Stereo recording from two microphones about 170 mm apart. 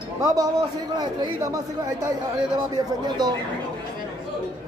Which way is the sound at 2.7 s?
25° right (ahead or behind).